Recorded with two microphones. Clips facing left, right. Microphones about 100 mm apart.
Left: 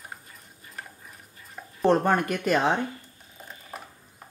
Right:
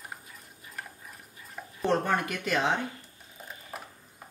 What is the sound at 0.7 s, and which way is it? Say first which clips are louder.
Stir: even; centre (ahead or behind).